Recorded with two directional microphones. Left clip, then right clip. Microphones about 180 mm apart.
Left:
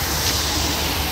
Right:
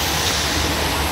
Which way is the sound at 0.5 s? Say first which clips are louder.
Right 2 dB; 70° left (ahead or behind).